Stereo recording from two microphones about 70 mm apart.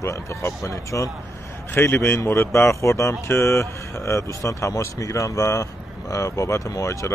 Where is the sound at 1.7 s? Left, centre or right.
Left.